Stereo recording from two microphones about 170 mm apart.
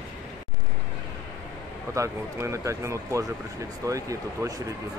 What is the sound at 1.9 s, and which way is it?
Speech, 15° right (ahead or behind).